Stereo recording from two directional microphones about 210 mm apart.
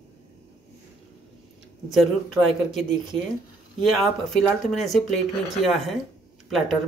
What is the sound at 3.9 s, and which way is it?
Speech, centre (ahead or behind).